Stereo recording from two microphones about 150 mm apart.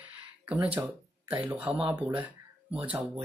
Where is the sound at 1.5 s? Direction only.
10° right (ahead or behind).